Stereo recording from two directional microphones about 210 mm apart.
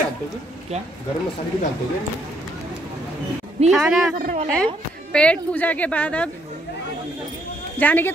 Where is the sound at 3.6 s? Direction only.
30° right (ahead or behind).